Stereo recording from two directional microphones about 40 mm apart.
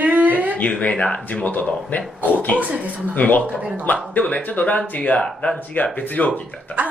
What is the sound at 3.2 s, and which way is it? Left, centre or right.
Speech, left.